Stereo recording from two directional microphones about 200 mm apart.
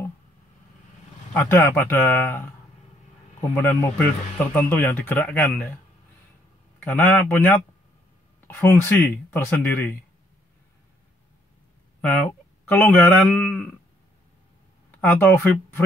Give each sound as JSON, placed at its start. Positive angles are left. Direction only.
{"t": 1.3, "sound": "speech", "side_deg": 10}
{"t": 3.5, "sound": "speech", "side_deg": 10}
{"t": 6.8, "sound": "speech", "side_deg": 10}
{"t": 12.0, "sound": "speech", "side_deg": 10}
{"t": 14.9, "sound": "speech", "side_deg": 10}